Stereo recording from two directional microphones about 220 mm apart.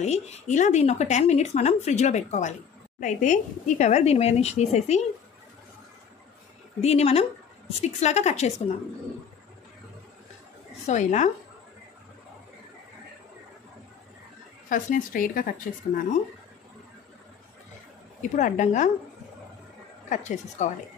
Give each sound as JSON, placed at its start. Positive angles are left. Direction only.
{"t": 0.0, "sound": "a woman's voice", "side_deg": 30}
{"t": 6.8, "sound": "a woman's voice", "side_deg": 30}
{"t": 10.9, "sound": "a woman's voice", "side_deg": 35}
{"t": 14.7, "sound": "a woman's voice", "side_deg": 35}
{"t": 18.3, "sound": "a woman's voice", "side_deg": 35}
{"t": 20.1, "sound": "a woman's voice", "side_deg": 35}